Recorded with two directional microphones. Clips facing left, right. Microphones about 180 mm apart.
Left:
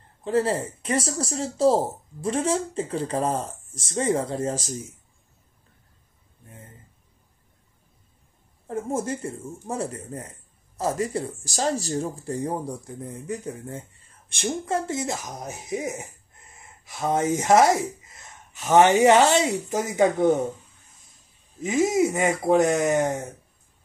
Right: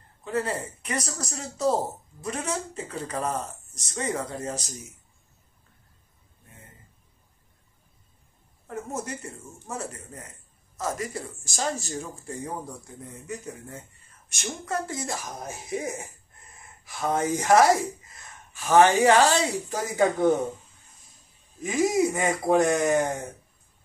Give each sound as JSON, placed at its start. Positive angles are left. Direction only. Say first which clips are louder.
{"t": 0.2, "sound": "speech", "louder": "left 6 dB", "side_deg": 30}
{"t": 8.6, "sound": "speech", "louder": "left 6 dB", "side_deg": 30}
{"t": 21.5, "sound": "speech", "louder": "left 2 dB", "side_deg": 20}